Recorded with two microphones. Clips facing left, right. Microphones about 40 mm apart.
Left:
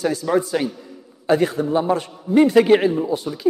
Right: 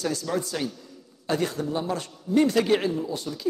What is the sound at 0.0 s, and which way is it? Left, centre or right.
A man's voice, centre.